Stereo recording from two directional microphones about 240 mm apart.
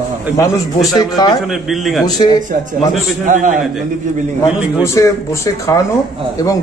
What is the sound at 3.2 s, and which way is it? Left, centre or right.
Speech, right.